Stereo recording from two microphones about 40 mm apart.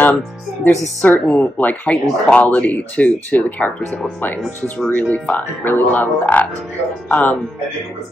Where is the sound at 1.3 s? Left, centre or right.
Left.